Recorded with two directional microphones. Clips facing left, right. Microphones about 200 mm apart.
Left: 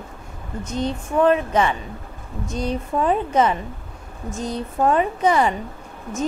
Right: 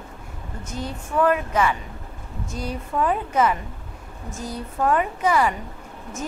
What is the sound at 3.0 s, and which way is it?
Speech, 25° left (ahead or behind).